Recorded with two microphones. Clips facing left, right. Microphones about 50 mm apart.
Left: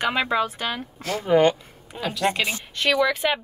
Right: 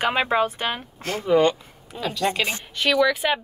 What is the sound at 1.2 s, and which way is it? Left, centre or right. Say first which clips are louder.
Speech: even; left.